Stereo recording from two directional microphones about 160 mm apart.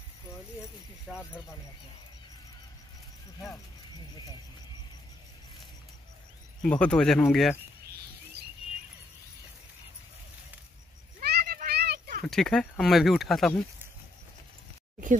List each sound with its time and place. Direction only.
1.1 s speech: centre (ahead or behind)
6.6 s speech: 5° left (ahead or behind)
11.1 s a sound: 75° right (ahead or behind)
12.3 s speech: 5° left (ahead or behind)